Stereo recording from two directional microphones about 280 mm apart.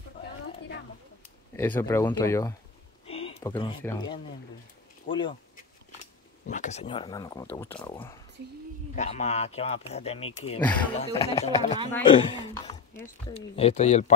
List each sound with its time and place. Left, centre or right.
1.6 s speech: centre
5.1 s speech: left
6.4 s speech: left; by 13.1 s centre
13.3 s speech: left